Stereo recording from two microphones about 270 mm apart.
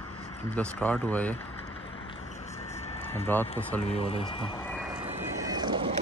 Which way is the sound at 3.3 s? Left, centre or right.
Centre.